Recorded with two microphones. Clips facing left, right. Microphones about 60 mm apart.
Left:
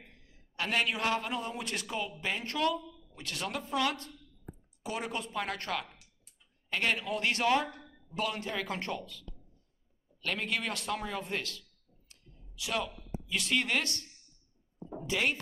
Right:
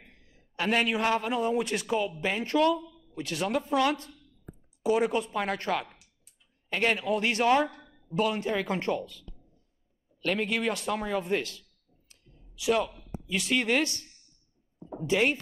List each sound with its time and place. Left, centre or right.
0.6 s a man's voice: centre
10.2 s a man's voice: centre
15.0 s speech: right